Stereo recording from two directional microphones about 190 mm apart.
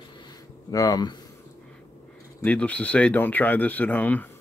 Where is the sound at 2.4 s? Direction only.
5° left (ahead or behind).